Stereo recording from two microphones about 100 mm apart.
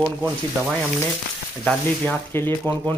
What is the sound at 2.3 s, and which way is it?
Speech, 25° left (ahead or behind).